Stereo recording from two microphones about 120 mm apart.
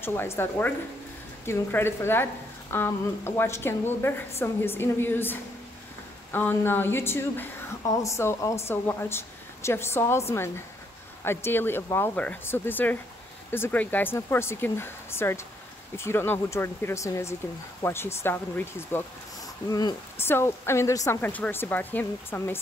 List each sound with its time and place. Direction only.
0.0 s a woman's voice: 20° left (ahead or behind)
19.4 s speech: 30° left (ahead or behind)
20.2 s a woman's voice: 20° left (ahead or behind)
21.2 s speech: 15° left (ahead or behind)